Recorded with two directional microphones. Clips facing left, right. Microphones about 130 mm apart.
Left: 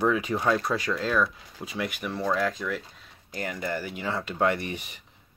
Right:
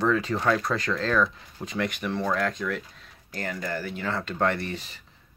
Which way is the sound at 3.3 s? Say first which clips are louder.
Even; 15° left (ahead or behind).